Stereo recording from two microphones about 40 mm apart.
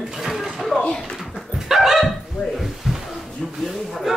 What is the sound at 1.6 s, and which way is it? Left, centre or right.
Dog, centre.